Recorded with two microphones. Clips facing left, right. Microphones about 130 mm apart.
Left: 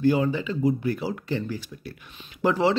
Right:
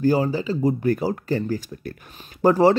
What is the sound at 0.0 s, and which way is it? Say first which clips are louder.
Speech: right 2 dB; 35° right (ahead or behind).